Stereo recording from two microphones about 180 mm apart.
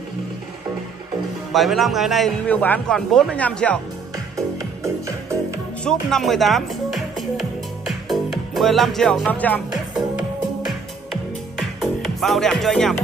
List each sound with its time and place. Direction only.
1.5 s a man's voice: centre (ahead or behind)
4.6 s music: 15° right (ahead or behind)
5.9 s music: 5° left (ahead or behind)
11.8 s speech: centre (ahead or behind)